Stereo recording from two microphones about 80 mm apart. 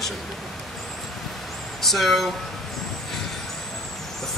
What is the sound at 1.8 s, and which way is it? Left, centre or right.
Speech, centre.